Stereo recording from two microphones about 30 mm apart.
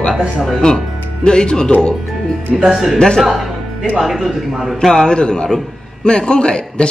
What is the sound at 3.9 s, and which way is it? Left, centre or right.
Speech, centre.